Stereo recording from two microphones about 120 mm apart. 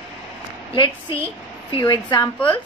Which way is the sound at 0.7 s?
45° left (ahead or behind).